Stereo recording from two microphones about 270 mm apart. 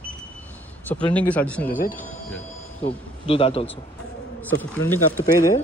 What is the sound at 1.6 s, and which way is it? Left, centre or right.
A man's voice, left.